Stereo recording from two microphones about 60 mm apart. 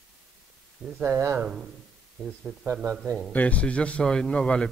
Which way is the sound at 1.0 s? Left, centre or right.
Right.